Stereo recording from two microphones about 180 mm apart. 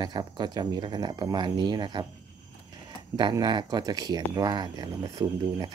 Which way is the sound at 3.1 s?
25° right (ahead or behind).